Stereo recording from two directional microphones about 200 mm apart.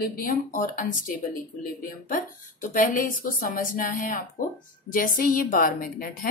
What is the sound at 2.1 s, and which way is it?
A woman's voice, 40° left (ahead or behind).